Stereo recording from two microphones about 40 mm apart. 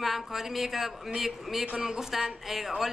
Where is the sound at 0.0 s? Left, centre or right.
Centre.